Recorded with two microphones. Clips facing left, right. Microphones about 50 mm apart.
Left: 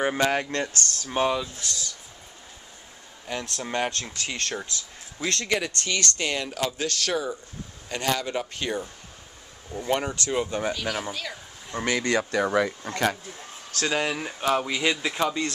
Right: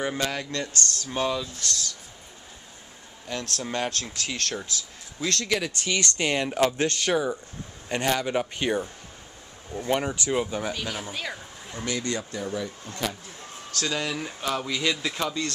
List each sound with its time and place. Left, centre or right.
0.0 s speech: left
1.0 s speech: left
3.3 s speech: centre
5.8 s speech: centre
9.7 s speech: centre
11.7 s speech: left
13.7 s speech: left